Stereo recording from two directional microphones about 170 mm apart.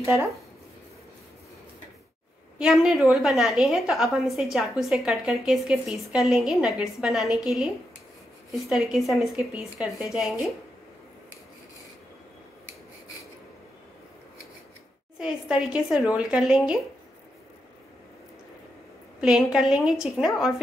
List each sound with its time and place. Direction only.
0.0 s speech: 15° right (ahead or behind)
2.6 s a woman's voice: centre (ahead or behind)
15.1 s a woman's voice: 5° right (ahead or behind)
19.2 s a woman's voice: 5° right (ahead or behind)